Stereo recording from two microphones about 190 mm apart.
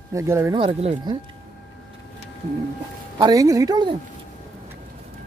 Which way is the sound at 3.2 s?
20° right (ahead or behind).